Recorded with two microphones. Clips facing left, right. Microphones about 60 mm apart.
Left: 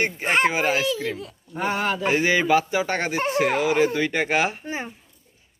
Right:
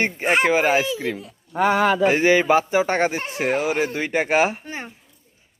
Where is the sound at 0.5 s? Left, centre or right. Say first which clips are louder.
Right 4 dB; right.